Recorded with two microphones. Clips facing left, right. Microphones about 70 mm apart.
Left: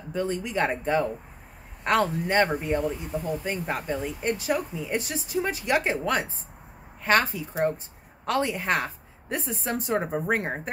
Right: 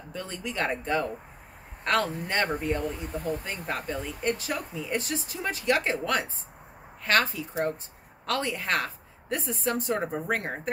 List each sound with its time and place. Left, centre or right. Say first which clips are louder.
0.1 s speech: left 8 dB; centre